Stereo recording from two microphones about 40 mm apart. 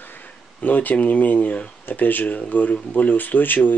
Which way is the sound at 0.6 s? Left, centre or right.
Left.